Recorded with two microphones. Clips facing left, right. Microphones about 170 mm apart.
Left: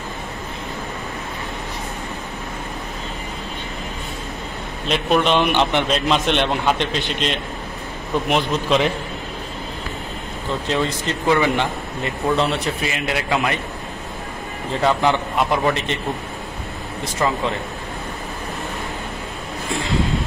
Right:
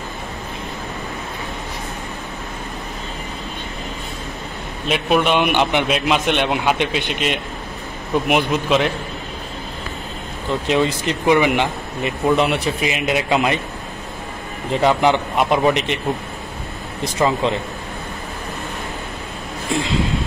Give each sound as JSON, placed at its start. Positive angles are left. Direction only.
{"t": 4.8, "sound": "a man's voice", "side_deg": -5}
{"t": 8.6, "sound": "a man's voice", "side_deg": -5}
{"t": 10.7, "sound": "a man's voice", "side_deg": -15}
{"t": 14.7, "sound": "a man's voice", "side_deg": -15}
{"t": 17.2, "sound": "a man's voice", "side_deg": -20}